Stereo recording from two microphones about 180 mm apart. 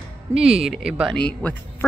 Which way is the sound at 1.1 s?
10° left (ahead or behind).